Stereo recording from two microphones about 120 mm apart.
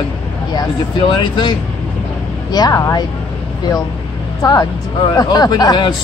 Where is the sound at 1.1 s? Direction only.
40° left (ahead or behind).